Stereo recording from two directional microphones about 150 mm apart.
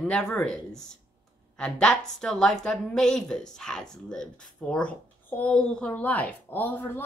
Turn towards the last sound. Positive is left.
turn(degrees=15)  # may be behind; listen again after turning